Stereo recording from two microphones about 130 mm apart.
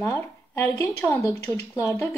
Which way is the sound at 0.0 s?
20° left (ahead or behind).